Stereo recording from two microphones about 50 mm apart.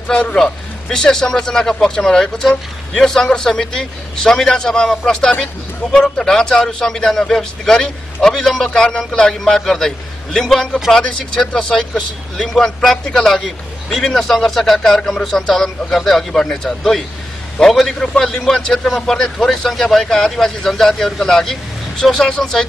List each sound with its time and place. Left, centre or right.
0.1 s a man's voice: left
0.4 s a man's voice: centre
15.5 s a man's voice: centre